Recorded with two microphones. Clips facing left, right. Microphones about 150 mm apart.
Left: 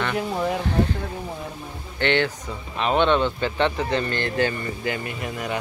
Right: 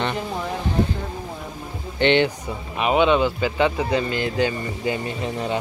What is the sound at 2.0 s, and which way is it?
Speech, 20° right (ahead or behind).